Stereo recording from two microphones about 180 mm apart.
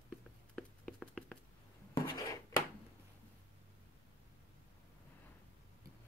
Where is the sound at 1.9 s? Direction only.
20° left (ahead or behind).